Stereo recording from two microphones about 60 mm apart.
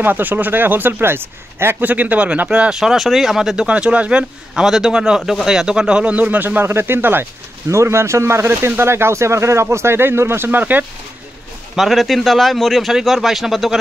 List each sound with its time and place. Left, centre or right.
0.0 s speech: right
1.9 s speech: right
2.7 s speech: centre
3.6 s speech: right
7.7 s speech: right
10.6 s speech: right
11.7 s a man's voice: centre